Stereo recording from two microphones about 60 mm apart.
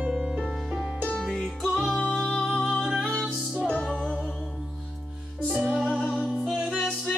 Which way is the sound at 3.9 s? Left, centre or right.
Centre.